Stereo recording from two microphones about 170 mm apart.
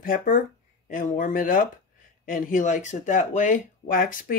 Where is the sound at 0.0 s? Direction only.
55° left (ahead or behind).